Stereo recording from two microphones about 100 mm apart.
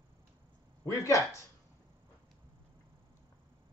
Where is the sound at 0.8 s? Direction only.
30° left (ahead or behind).